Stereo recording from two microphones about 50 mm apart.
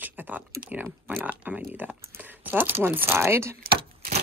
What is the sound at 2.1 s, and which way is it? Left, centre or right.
Speech, right.